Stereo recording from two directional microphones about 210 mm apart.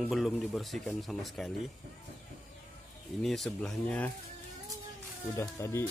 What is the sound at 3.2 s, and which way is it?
Speech, centre (ahead or behind).